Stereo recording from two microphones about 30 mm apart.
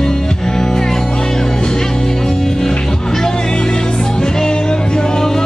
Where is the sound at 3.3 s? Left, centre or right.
Left.